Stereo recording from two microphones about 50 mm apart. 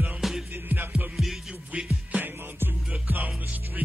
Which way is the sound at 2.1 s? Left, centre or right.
Right.